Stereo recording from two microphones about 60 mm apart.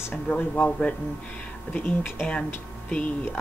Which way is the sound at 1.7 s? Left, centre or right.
Left.